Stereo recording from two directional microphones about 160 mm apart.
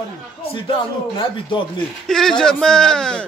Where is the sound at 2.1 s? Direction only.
5° left (ahead or behind).